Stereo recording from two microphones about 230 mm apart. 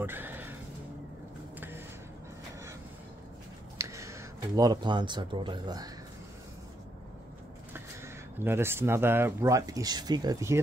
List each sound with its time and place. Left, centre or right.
0.0 s a sound: centre
3.7 s speech: centre
8.4 s speech: centre